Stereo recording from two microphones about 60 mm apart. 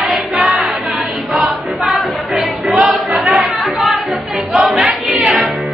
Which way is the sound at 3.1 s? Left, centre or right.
Centre.